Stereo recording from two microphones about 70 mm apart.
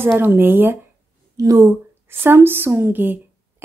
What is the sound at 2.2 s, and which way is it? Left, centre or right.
Speech, right.